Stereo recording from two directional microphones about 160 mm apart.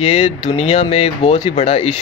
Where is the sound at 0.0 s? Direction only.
40° left (ahead or behind).